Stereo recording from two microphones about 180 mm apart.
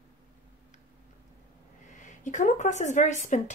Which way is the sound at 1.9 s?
45° left (ahead or behind).